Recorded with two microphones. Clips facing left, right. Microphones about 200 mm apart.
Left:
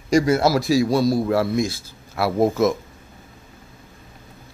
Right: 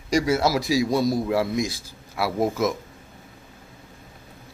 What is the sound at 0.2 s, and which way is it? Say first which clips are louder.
Speech: left 2 dB; centre (ahead or behind).